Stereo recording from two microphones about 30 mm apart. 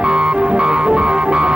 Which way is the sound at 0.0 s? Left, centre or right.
Right.